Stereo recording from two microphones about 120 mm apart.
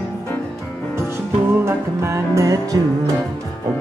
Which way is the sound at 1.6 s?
25° right (ahead or behind).